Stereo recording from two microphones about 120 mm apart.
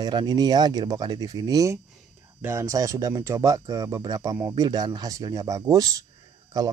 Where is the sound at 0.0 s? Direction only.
35° right (ahead or behind).